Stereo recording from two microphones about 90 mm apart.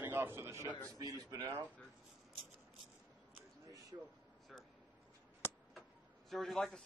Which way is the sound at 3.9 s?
45° right (ahead or behind).